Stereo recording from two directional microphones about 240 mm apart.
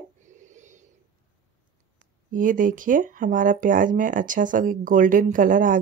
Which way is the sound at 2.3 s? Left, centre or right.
Right.